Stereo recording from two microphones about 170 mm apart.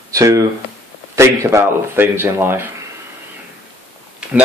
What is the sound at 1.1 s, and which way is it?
Speech, 15° right (ahead or behind).